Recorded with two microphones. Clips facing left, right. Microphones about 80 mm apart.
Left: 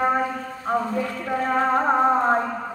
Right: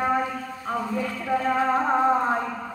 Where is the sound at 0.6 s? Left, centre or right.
Left.